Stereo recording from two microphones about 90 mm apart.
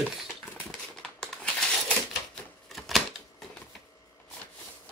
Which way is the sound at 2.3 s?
5° left (ahead or behind).